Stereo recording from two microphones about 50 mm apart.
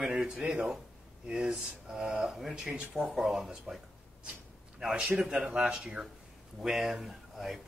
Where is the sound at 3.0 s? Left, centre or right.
Centre.